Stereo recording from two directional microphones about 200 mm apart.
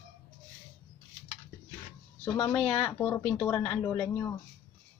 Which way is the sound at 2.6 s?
30° left (ahead or behind).